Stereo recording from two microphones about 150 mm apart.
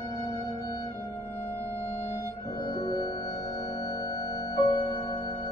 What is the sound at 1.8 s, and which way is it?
Music, 45° left (ahead or behind).